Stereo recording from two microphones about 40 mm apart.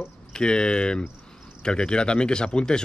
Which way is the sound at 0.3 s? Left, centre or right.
Left.